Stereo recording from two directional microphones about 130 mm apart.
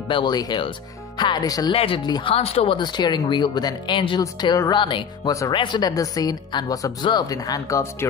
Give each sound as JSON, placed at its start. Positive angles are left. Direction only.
{"t": 0.1, "sound": "speech", "side_deg": 35}
{"t": 1.7, "sound": "speech", "side_deg": 45}
{"t": 2.3, "sound": "speech", "side_deg": 50}
{"t": 4.2, "sound": "speech", "side_deg": 30}